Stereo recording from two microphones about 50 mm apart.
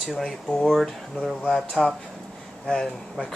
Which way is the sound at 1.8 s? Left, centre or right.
Centre.